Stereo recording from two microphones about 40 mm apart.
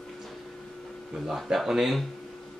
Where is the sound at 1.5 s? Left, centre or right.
Centre.